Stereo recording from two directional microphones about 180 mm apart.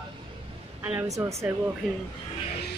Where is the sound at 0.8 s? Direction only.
10° right (ahead or behind).